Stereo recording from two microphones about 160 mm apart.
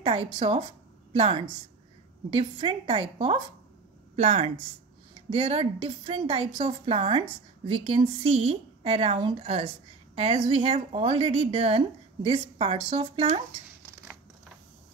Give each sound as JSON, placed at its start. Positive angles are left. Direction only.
{"t": 0.0, "sound": "a woman's voice", "side_deg": -35}